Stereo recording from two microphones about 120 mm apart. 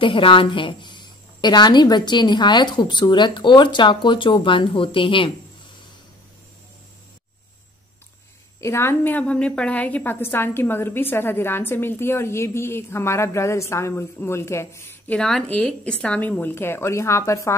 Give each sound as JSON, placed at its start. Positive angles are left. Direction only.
{"t": 0.0, "sound": "a woman's voice", "side_deg": 45}
{"t": 8.5, "sound": "a woman's voice", "side_deg": 20}
{"t": 15.1, "sound": "a woman's voice", "side_deg": 5}